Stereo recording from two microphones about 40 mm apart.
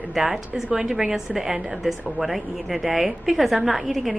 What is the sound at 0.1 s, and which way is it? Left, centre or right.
A woman's voice, centre.